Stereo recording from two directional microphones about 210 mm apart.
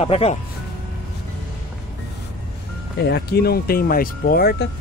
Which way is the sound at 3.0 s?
50° left (ahead or behind).